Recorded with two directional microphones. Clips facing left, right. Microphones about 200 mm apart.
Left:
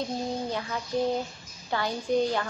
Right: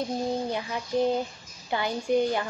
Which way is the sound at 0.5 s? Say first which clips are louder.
Right 1 dB; 15° right (ahead or behind).